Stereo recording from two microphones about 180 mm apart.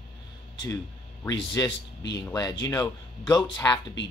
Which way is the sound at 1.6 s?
20° left (ahead or behind).